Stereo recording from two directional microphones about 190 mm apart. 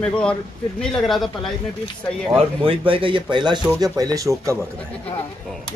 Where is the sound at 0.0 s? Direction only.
5° left (ahead or behind).